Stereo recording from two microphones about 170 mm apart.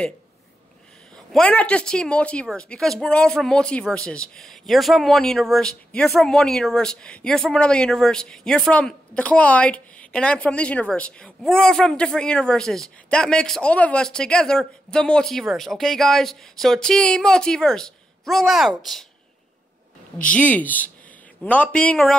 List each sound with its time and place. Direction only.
1.1 s a woman's voice: 5° left (ahead or behind)
20.2 s a woman's voice: 10° left (ahead or behind)